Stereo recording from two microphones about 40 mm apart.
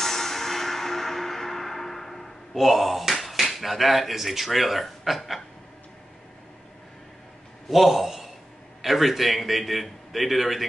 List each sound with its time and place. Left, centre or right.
0.0 s music: centre
2.5 s speech: centre
7.6 s a man's voice: centre